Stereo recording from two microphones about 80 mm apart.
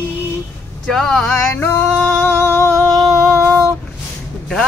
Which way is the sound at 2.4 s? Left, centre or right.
Left.